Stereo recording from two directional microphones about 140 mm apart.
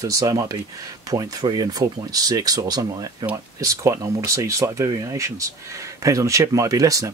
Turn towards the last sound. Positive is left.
turn(degrees=-25)  # may be behind; listen again after turning